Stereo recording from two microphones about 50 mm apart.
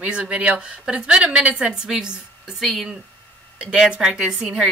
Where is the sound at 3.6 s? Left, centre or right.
Centre.